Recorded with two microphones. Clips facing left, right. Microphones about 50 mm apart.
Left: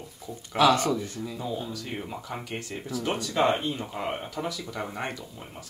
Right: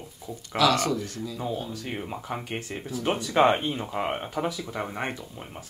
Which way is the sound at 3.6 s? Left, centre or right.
Centre.